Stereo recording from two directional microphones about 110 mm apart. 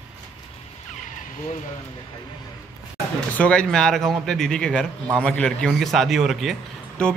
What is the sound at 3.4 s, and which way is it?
A man's voice, 10° left (ahead or behind).